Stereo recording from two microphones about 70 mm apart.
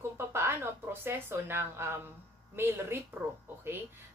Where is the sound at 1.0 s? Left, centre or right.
Right.